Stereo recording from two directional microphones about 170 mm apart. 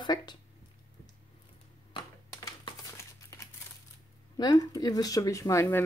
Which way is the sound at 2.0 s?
25° left (ahead or behind).